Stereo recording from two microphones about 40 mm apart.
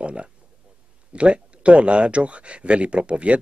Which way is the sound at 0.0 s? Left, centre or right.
Right.